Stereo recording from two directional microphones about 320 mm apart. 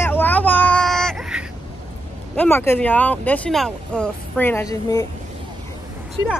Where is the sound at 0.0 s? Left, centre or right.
Centre.